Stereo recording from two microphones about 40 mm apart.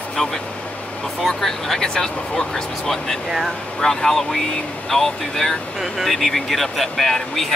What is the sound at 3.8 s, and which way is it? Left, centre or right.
Speech, centre.